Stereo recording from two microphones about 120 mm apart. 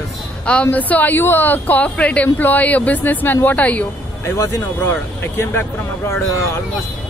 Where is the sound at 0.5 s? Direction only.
10° left (ahead or behind).